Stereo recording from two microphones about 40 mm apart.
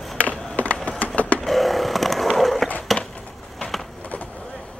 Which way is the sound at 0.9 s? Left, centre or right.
Left.